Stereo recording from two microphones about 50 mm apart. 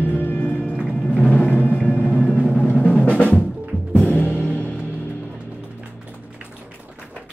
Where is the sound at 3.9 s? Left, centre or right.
Left.